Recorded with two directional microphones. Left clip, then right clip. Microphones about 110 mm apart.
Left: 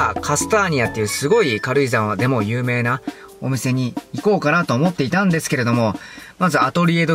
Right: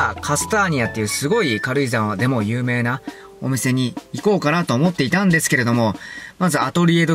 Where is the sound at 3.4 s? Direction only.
10° right (ahead or behind).